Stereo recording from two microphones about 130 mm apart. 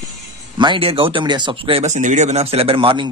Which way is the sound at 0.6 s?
40° right (ahead or behind).